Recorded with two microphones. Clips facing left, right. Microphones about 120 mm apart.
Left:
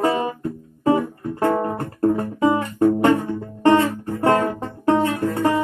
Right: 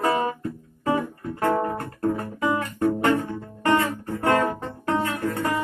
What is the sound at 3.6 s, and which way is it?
Music, 30° left (ahead or behind).